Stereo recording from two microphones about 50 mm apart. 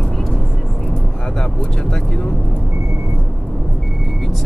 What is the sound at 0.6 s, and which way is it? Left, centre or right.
Vehicle, centre.